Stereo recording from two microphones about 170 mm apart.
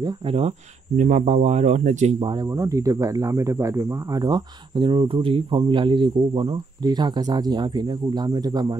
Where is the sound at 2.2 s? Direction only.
25° right (ahead or behind).